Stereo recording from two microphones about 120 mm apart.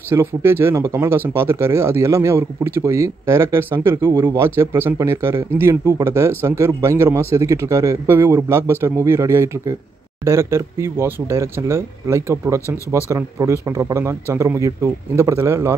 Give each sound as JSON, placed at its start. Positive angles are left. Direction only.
{"t": 0.1, "sound": "speech", "side_deg": -20}